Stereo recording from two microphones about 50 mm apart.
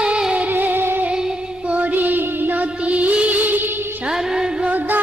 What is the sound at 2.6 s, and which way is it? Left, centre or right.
Music, right.